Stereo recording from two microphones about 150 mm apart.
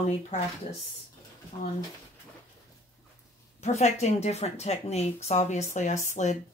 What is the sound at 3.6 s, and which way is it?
Speech, 50° left (ahead or behind).